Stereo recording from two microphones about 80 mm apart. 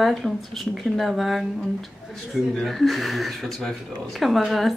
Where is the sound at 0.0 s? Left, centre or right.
Centre.